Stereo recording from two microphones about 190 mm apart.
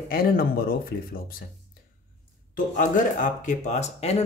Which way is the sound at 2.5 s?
45° left (ahead or behind).